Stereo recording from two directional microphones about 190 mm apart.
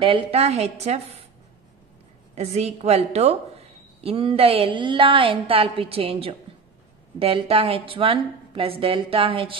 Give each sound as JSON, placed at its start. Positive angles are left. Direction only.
{"t": 0.0, "sound": "a woman's voice", "side_deg": -30}
{"t": 2.3, "sound": "a woman's voice", "side_deg": -35}